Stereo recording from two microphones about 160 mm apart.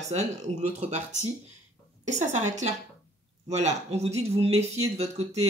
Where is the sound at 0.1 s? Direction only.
45° right (ahead or behind).